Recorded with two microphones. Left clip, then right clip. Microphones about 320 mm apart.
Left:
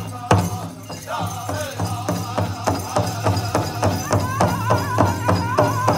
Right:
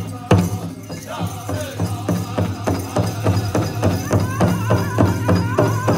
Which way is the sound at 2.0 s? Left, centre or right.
Centre.